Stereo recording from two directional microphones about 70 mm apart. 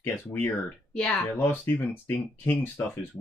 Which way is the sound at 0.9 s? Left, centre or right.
Centre.